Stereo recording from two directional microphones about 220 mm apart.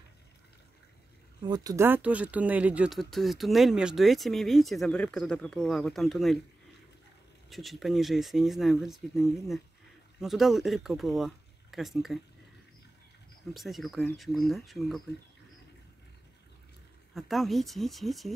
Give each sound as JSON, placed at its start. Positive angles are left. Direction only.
{"t": 1.4, "sound": "speech", "side_deg": -15}
{"t": 7.4, "sound": "speech", "side_deg": 0}
{"t": 13.5, "sound": "speech", "side_deg": 0}
{"t": 17.1, "sound": "speech", "side_deg": 0}